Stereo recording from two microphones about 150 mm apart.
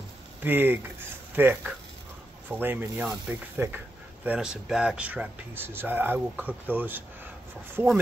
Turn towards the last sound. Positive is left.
turn(degrees=-15)  # may be behind; listen again after turning